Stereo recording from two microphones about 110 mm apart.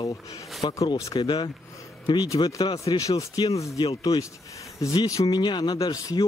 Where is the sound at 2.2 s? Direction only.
35° left (ahead or behind).